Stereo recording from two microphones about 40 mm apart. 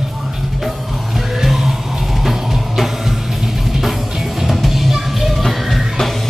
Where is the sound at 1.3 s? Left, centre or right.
Centre.